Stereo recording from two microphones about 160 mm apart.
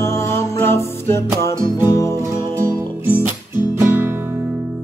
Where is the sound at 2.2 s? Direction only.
20° right (ahead or behind).